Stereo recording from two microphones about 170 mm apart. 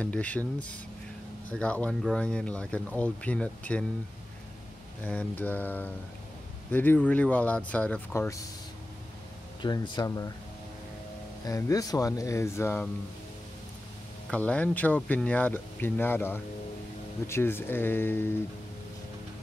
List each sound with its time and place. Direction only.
0.0 s speech: 10° left (ahead or behind)
5.0 s speech: 10° left (ahead or behind)
9.6 s speech: 25° left (ahead or behind)
11.4 s speech: 20° left (ahead or behind)
14.3 s speech: 5° left (ahead or behind)